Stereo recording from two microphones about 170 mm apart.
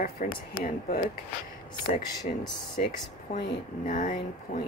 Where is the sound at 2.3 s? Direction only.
50° left (ahead or behind).